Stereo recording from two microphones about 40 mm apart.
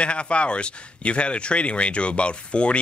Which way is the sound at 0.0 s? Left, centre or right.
Left.